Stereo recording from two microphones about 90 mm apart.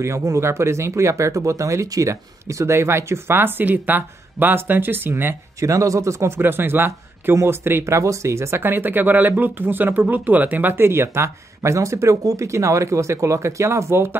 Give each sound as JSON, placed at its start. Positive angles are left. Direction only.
{"t": 0.0, "sound": "speech", "side_deg": -35}